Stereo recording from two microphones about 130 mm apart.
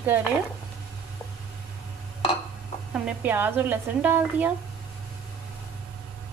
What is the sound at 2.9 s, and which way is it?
Speech, 10° right (ahead or behind).